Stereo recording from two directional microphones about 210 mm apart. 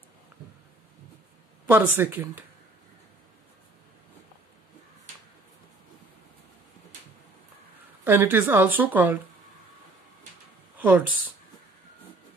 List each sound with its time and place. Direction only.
1.7 s speech: 10° right (ahead or behind)
8.0 s speech: 10° right (ahead or behind)
10.8 s speech: 5° right (ahead or behind)